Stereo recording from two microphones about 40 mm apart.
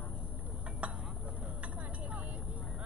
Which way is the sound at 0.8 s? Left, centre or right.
Right.